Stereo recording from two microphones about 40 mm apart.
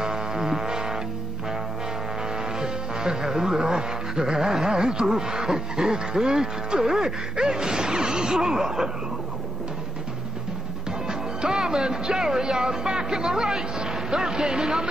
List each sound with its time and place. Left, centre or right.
0.0 s music: centre
2.3 s speech: centre
7.3 s a sound: centre
10.9 s speech: centre